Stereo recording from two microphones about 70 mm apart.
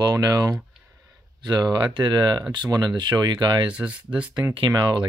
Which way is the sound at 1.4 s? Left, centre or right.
Right.